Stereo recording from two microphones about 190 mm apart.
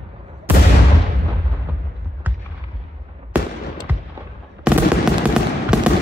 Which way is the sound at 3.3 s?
10° right (ahead or behind).